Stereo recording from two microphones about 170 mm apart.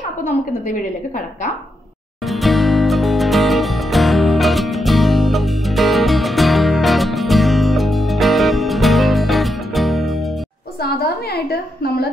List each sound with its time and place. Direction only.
0.2 s a woman's voice: 50° left (ahead or behind)
2.2 s music: centre (ahead or behind)
10.8 s a woman's voice: 65° left (ahead or behind)